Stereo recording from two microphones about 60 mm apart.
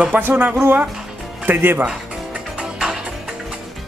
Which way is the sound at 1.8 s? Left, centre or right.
Centre.